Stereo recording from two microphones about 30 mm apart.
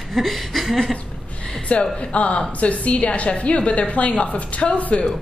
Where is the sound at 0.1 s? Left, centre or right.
Centre.